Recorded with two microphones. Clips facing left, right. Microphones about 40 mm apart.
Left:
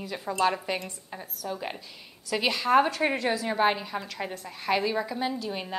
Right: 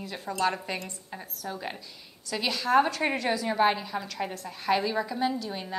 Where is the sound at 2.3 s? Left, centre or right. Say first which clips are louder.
Left 1 dB; centre.